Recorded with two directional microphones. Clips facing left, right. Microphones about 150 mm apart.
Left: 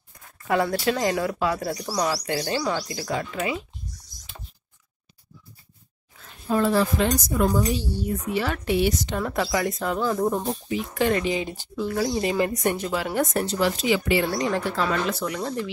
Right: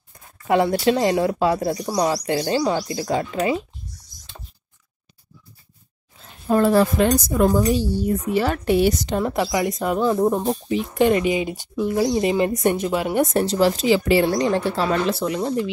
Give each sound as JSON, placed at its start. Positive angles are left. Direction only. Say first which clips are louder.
{"t": 0.5, "sound": "speech", "louder": "right 5 dB", "side_deg": -25}
{"t": 6.1, "sound": "a sound", "louder": "right 5 dB", "side_deg": -30}
{"t": 6.5, "sound": "a woman's voice", "louder": "right 5 dB", "side_deg": -55}
{"t": 9.2, "sound": "speech", "louder": "right 3 dB", "side_deg": -20}
{"t": 10.5, "sound": "speech", "louder": "right 5 dB", "side_deg": -30}